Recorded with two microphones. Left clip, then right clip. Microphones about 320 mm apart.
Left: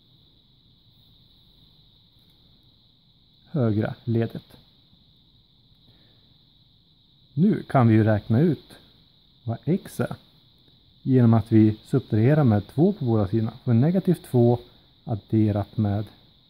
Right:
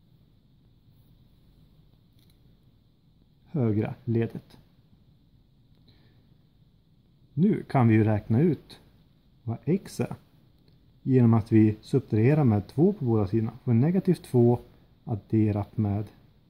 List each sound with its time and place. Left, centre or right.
3.4 s speech: left
7.3 s speech: left